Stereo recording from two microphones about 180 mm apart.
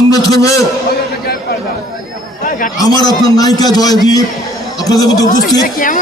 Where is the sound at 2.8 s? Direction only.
20° left (ahead or behind).